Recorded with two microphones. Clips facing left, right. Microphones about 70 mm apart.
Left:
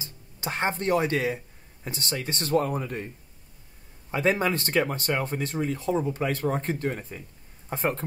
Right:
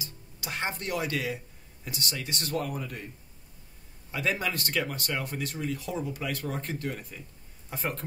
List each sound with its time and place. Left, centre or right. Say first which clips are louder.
0.0 s speech: left 6 dB; left
4.1 s speech: left 6 dB; left